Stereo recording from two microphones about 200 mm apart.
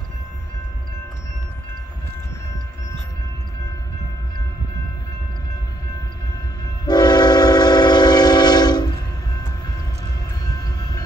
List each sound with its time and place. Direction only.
6.9 s train: 20° left (ahead or behind)